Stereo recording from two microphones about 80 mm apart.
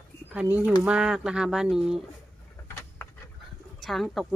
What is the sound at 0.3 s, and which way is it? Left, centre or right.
Speech, centre.